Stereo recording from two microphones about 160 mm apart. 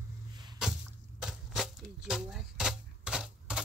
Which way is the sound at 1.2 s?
Centre (ahead or behind).